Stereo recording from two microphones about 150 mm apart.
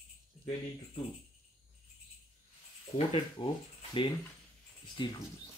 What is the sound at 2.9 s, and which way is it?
Speech, 40° left (ahead or behind).